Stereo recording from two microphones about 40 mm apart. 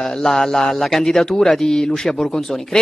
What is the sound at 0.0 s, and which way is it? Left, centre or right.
Speech, centre.